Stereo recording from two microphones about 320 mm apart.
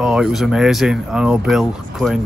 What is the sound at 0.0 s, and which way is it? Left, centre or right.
Speech, centre.